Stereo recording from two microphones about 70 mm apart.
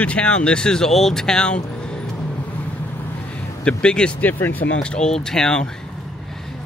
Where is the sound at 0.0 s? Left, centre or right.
Centre.